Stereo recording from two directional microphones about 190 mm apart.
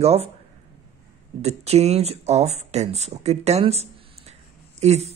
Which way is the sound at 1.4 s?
35° right (ahead or behind).